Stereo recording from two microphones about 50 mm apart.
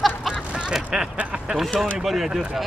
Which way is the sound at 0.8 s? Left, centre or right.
Centre.